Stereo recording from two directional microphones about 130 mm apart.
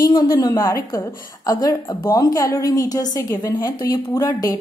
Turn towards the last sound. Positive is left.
turn(degrees=25)  # may be behind; listen again after turning